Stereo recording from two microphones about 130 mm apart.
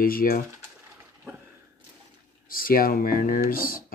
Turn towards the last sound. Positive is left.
turn(degrees=90)